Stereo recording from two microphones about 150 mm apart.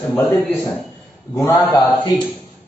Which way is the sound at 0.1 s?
5° left (ahead or behind).